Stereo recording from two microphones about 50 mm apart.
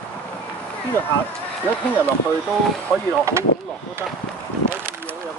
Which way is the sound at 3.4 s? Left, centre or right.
Right.